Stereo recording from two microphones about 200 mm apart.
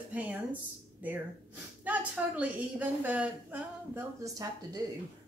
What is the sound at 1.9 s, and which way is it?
A woman's voice, 5° right (ahead or behind).